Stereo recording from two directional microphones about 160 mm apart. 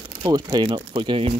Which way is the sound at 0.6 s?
30° right (ahead or behind).